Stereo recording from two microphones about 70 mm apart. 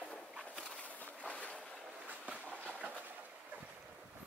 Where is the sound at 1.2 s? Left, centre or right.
Centre.